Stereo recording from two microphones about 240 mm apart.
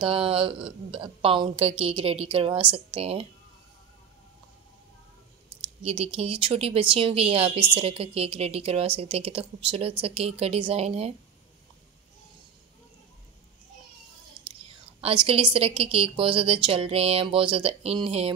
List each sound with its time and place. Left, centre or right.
0.0 s a woman's voice: right
5.6 s a woman's voice: right
15.0 s a woman's voice: right